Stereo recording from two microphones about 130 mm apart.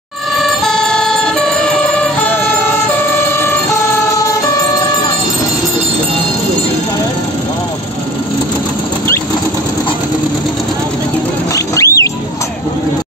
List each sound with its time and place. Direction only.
0.4 s emergency vehicle: centre (ahead or behind)
11.5 s rodents: 25° left (ahead or behind)